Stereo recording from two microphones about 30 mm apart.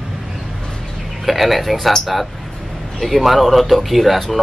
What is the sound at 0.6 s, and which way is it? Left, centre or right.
Bird, left.